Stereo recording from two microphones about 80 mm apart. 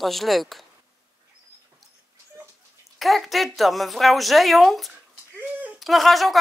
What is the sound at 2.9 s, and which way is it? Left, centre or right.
A woman's voice, centre.